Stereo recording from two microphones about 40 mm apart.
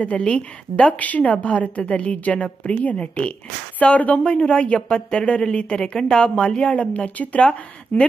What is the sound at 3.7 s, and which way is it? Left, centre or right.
Speech, left.